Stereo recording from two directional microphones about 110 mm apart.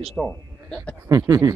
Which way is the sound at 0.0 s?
5° left (ahead or behind).